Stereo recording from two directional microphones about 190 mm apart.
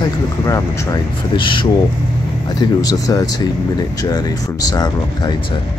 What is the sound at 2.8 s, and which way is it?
Speech, 20° left (ahead or behind).